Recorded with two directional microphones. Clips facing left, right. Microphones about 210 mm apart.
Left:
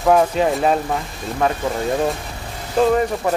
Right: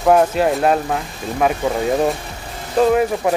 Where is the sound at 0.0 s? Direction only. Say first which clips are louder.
Right 1 dB; 5° right (ahead or behind).